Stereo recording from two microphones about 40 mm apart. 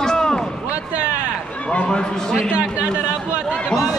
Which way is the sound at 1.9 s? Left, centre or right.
Centre.